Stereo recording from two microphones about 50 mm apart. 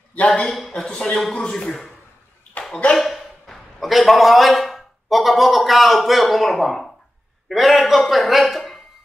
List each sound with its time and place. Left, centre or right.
0.3 s speech: centre
2.6 s a sound: left
3.0 s a man's voice: centre